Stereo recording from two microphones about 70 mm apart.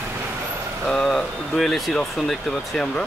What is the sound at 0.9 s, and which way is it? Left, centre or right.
Speech, centre.